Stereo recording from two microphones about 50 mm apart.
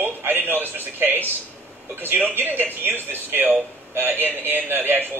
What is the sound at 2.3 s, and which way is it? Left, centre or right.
A man's voice, right.